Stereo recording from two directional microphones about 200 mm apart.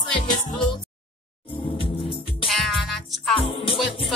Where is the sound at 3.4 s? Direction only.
25° left (ahead or behind).